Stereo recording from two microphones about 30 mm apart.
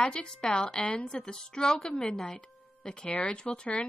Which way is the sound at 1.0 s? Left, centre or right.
Left.